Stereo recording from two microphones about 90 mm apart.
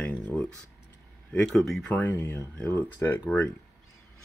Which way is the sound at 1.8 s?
15° left (ahead or behind).